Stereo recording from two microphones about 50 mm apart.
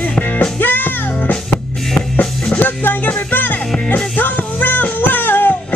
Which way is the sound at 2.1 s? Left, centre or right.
Left.